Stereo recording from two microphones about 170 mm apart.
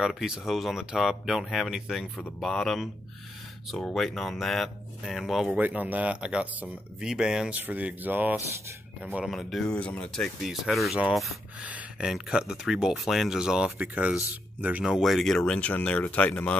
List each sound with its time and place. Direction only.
0.0 s speech: centre (ahead or behind)